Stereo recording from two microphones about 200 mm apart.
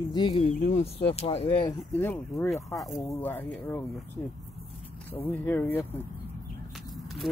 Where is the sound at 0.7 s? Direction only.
35° left (ahead or behind).